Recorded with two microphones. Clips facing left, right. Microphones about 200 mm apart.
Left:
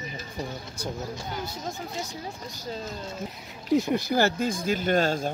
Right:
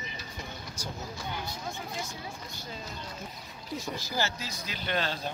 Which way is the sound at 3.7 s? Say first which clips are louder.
Left 12 dB; 60° left (ahead or behind).